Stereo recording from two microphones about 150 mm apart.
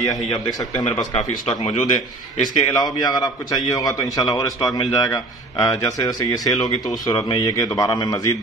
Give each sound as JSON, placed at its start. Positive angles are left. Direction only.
{"t": 0.0, "sound": "a man's voice", "side_deg": 25}
{"t": 1.1, "sound": "a man's voice", "side_deg": 40}
{"t": 2.4, "sound": "a man's voice", "side_deg": 25}